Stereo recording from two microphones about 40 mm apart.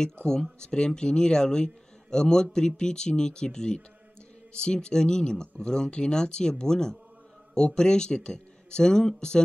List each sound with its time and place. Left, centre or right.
0.0 s a man's voice: centre